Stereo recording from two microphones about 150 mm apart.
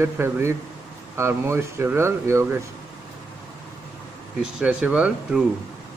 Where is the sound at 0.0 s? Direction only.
15° right (ahead or behind).